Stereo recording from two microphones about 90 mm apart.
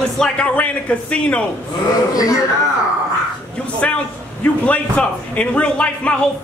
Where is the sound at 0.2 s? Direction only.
10° left (ahead or behind).